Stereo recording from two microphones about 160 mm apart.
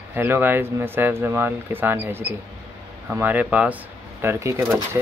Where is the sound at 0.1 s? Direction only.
15° right (ahead or behind).